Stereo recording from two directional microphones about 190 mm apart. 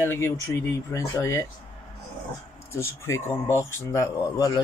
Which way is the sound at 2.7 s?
15° left (ahead or behind).